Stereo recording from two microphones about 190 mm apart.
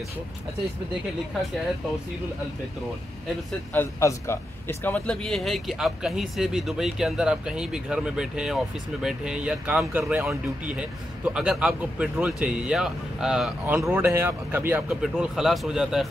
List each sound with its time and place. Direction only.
3.7 s a man's voice: 15° left (ahead or behind)